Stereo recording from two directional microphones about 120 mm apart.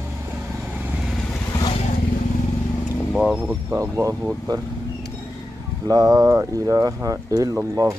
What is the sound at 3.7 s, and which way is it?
Speech, 25° right (ahead or behind).